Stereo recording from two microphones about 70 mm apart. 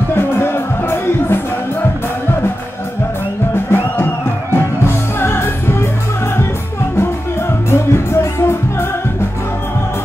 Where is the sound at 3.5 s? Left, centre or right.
Left.